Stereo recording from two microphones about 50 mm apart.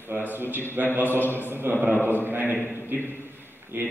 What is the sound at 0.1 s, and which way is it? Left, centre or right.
Speech, right.